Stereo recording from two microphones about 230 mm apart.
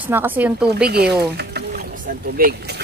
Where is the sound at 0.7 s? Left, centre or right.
Right.